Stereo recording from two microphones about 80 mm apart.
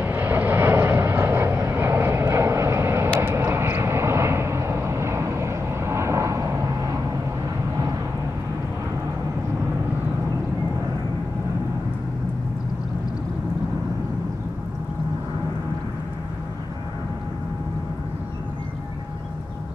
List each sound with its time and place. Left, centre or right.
0.0 s vehicle: right